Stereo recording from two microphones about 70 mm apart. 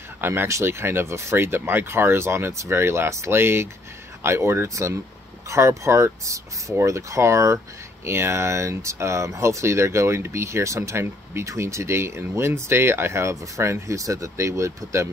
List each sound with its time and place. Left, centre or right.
0.2 s speech: right